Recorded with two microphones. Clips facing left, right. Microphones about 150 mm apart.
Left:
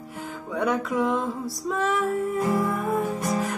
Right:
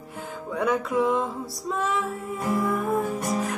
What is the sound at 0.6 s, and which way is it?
Music, centre (ahead or behind).